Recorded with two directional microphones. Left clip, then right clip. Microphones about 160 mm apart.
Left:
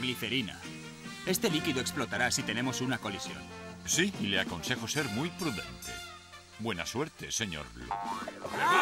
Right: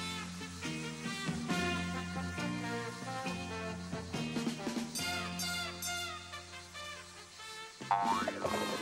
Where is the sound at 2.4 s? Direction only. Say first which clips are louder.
Left 5 dB; 10° left (ahead or behind).